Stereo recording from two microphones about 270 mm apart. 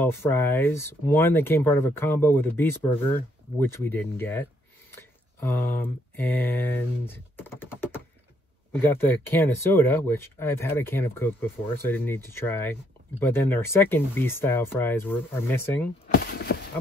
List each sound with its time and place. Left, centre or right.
0.0 s speech: centre
16.5 s horse: left